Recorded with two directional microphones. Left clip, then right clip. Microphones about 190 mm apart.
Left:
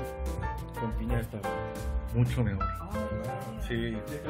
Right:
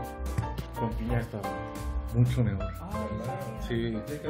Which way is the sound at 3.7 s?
55° left (ahead or behind).